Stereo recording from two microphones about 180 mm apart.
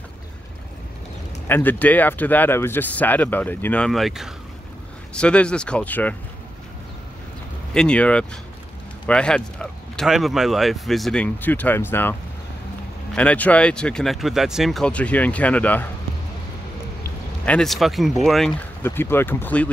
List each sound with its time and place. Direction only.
1.5 s speech: 10° left (ahead or behind)
7.7 s speech: 5° left (ahead or behind)
17.5 s speech: centre (ahead or behind)
18.8 s speech: 10° left (ahead or behind)